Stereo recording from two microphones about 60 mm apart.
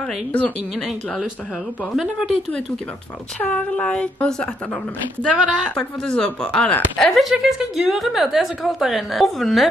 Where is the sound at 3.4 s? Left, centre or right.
Left.